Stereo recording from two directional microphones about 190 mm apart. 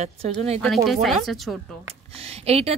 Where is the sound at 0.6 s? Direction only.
Centre (ahead or behind).